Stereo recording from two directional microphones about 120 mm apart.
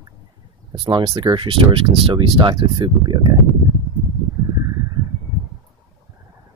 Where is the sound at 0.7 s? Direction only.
40° right (ahead or behind).